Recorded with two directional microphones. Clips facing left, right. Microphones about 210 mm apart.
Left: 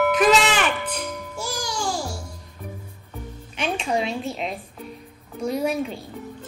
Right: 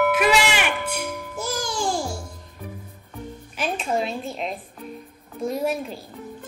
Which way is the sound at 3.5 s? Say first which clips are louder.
Left 1 dB; 5° right (ahead or behind).